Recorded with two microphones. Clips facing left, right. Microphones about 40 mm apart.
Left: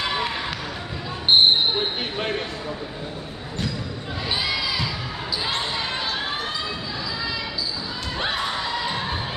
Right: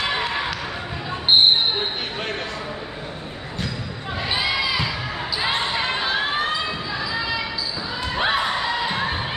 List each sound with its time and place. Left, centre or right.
0.2 s basketball bounce: centre
4.3 s crowd: centre
5.8 s basketball bounce: right
8.2 s crowd: centre